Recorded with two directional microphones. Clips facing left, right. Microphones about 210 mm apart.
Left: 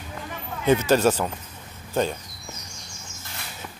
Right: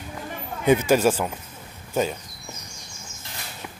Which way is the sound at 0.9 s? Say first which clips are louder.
Even; 10° right (ahead or behind).